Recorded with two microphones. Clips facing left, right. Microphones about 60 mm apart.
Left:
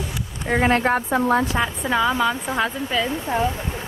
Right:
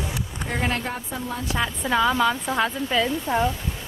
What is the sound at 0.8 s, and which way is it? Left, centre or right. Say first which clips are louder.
Speech: left 10 dB; left.